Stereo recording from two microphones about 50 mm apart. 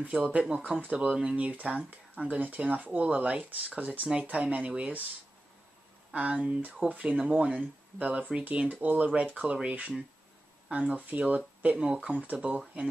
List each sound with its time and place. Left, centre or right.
0.0 s speech: right
6.1 s speech: right